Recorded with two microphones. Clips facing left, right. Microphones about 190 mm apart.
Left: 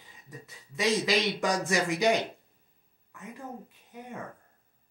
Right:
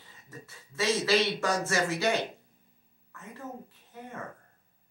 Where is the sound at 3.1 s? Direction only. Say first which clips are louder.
Even; 15° left (ahead or behind).